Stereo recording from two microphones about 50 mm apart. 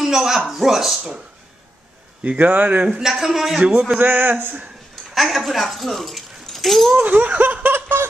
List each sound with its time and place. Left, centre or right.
0.0 s a sound: centre
0.5 s speech: centre
2.2 s speech: right
3.0 s a man's voice: centre
4.0 s speech: right
5.1 s speech: centre
7.0 s speech: right
7.7 s a sound: right